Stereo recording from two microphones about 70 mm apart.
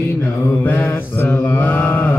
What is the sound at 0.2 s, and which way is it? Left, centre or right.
Mantra, left.